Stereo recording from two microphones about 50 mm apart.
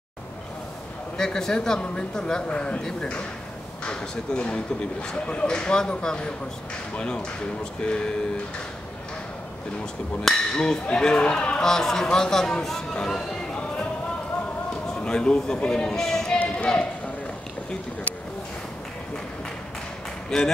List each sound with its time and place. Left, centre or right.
1.1 s speech: centre
10.2 s speech: centre
11.6 s speech: centre
15.0 s speech: centre
16.5 s clip-clop: left
20.2 s speech: centre